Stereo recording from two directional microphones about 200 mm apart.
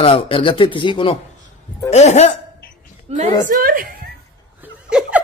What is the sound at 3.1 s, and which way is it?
Speech, 30° right (ahead or behind).